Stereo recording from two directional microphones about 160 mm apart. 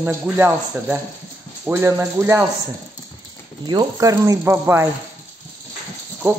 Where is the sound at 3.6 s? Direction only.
25° right (ahead or behind).